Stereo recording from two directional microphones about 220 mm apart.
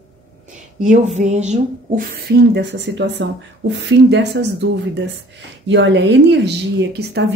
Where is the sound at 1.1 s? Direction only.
30° right (ahead or behind).